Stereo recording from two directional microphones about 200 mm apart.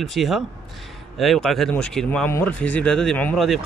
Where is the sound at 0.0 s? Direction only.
Centre (ahead or behind).